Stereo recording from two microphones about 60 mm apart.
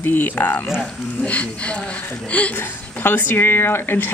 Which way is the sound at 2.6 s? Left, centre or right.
Left.